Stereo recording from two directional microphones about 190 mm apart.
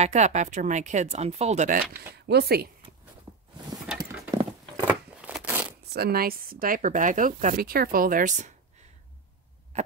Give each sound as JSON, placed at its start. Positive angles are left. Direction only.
{"t": 0.0, "sound": "speech", "side_deg": -35}
{"t": 3.9, "sound": "a sound", "side_deg": -5}
{"t": 5.9, "sound": "speech", "side_deg": -55}
{"t": 9.7, "sound": "hum", "side_deg": -35}